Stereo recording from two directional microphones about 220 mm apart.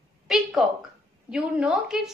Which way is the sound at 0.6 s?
Centre (ahead or behind).